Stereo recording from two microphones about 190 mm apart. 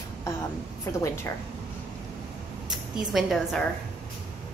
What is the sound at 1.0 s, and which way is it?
Speech, 15° left (ahead or behind).